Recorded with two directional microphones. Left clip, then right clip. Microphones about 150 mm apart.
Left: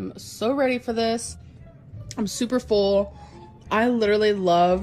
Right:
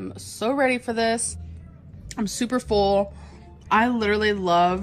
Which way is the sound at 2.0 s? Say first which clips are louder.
Even; 35° left (ahead or behind).